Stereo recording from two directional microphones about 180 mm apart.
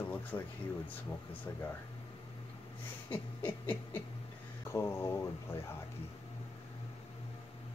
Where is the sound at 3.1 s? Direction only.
10° left (ahead or behind).